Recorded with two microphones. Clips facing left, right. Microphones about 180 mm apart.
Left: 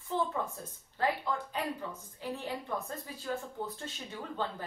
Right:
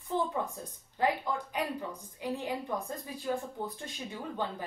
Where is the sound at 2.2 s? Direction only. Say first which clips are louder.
Right 3 dB; 15° right (ahead or behind).